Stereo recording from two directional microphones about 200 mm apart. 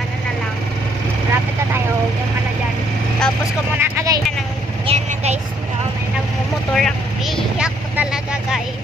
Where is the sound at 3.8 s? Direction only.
15° right (ahead or behind).